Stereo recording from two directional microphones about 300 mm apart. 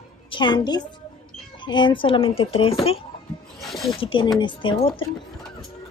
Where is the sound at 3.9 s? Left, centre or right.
Centre.